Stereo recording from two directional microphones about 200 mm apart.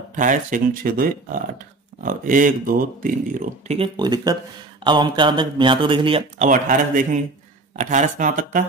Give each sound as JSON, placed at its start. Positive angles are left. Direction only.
{"t": 0.1, "sound": "speech", "side_deg": -40}